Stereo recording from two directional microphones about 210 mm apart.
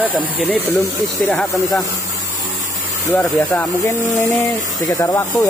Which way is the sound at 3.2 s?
10° left (ahead or behind).